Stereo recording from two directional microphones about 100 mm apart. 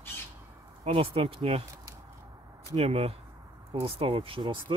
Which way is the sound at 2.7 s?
85° right.